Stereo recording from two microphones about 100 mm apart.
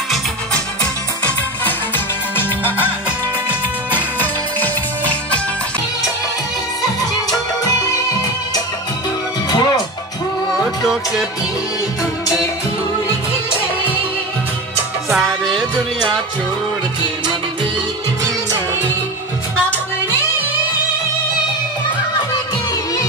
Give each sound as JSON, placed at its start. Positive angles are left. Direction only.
{"t": 2.3, "sound": "music", "side_deg": 20}
{"t": 4.2, "sound": "music", "side_deg": 15}
{"t": 9.5, "sound": "music", "side_deg": 45}
{"t": 10.8, "sound": "music", "side_deg": 0}
{"t": 15.0, "sound": "music", "side_deg": 0}